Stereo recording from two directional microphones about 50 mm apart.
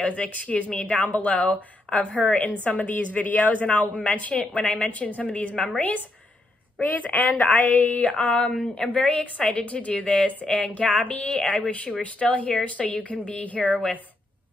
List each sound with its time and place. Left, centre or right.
0.0 s speech: left
8.5 s speech: centre